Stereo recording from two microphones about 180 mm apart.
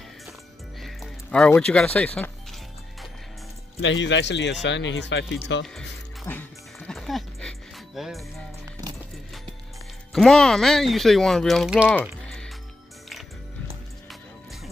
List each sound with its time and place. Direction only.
0.7 s music: centre (ahead or behind)
2.0 s speech: 10° left (ahead or behind)
3.8 s speech: 90° left
5.8 s music: 10° left (ahead or behind)
10.1 s speech: centre (ahead or behind)
11.9 s typing: 5° left (ahead or behind)